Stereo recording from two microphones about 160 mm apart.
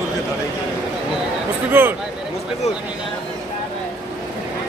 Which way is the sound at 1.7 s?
10° right (ahead or behind).